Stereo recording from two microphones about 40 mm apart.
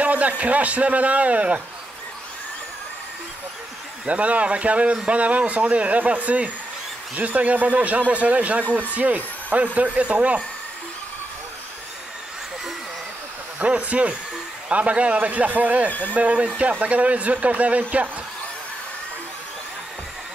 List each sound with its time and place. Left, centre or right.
0.0 s speech: right
4.1 s speech: right
13.6 s speech: right